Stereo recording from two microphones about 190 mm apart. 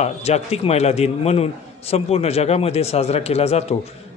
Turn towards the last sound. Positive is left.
turn(degrees=35)  # may be behind; listen again after turning